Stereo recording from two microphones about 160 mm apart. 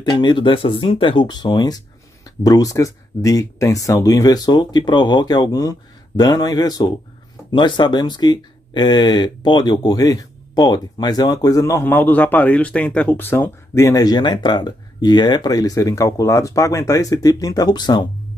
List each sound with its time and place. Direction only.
0.0 s speech: 30° left (ahead or behind)